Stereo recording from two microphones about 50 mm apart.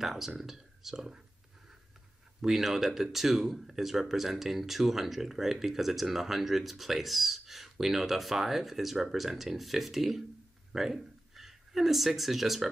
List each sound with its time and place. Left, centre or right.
0.0 s speech: centre
2.4 s speech: centre